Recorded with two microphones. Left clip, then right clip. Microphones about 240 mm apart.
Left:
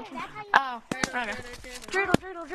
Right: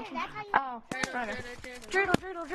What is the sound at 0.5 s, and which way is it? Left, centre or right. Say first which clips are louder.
Speech: left 6 dB; left.